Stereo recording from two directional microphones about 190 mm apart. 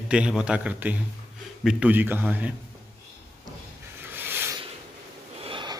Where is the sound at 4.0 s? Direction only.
10° right (ahead or behind).